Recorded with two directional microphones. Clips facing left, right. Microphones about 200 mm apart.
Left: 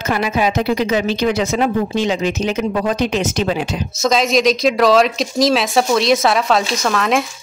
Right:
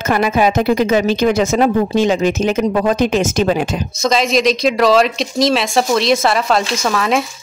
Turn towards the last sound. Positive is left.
turn(degrees=0)  # may be behind; listen again after turning